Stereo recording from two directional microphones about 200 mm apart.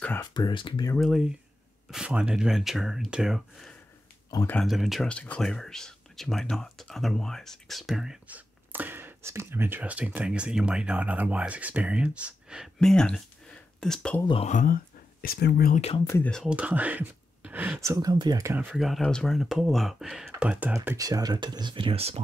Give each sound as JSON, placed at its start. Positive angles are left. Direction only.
{"t": 0.2, "sound": "speech", "side_deg": 20}
{"t": 0.9, "sound": "speech", "side_deg": 0}
{"t": 4.3, "sound": "speech", "side_deg": 20}
{"t": 4.6, "sound": "speech", "side_deg": 0}
{"t": 14.2, "sound": "speech", "side_deg": 25}
{"t": 14.5, "sound": "speech", "side_deg": 40}
{"t": 15.2, "sound": "speech", "side_deg": 55}
{"t": 16.0, "sound": "speech", "side_deg": 10}